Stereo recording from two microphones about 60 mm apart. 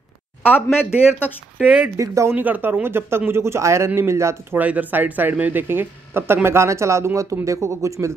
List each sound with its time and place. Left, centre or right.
0.4 s speech: left
1.6 s speech: right
2.0 s speech: right
2.3 s speech: right
4.6 s speech: right